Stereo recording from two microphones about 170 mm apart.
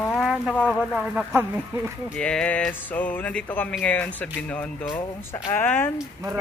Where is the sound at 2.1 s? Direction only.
5° left (ahead or behind).